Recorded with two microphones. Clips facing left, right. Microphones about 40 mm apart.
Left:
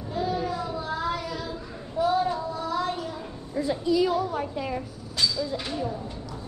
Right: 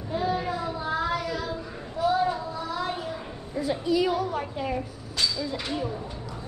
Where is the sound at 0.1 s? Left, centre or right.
Centre.